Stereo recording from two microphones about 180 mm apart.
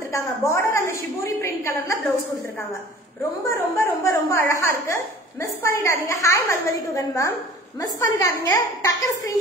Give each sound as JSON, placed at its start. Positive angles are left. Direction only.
{"t": 0.1, "sound": "a woman's voice", "side_deg": 15}
{"t": 3.4, "sound": "a woman's voice", "side_deg": 15}